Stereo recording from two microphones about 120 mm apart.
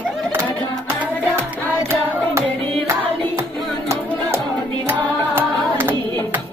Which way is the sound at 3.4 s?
25° right (ahead or behind).